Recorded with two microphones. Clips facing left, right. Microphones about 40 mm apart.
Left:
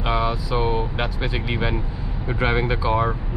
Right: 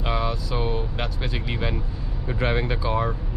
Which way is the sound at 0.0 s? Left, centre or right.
Centre.